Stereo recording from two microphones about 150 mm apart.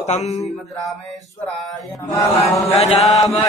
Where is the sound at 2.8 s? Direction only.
45° left (ahead or behind).